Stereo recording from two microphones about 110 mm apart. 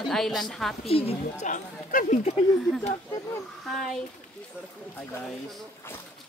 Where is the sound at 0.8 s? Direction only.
65° left (ahead or behind).